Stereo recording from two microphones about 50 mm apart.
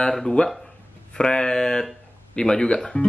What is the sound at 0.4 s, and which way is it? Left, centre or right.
Speech, left.